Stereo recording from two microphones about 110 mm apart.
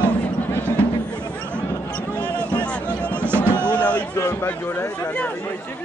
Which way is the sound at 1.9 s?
10° left (ahead or behind).